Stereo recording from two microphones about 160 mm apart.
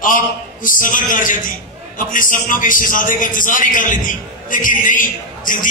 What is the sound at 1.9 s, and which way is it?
Music, 55° left (ahead or behind).